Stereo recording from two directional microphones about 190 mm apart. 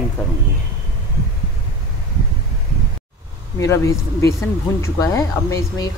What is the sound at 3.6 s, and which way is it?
Speech, 15° left (ahead or behind).